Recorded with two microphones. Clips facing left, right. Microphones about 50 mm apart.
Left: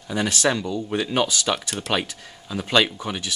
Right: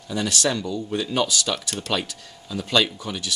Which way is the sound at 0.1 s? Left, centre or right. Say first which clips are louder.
Left 2 dB; left.